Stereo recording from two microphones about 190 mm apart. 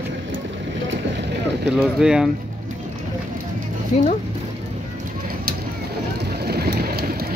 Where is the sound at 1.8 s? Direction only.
5° right (ahead or behind).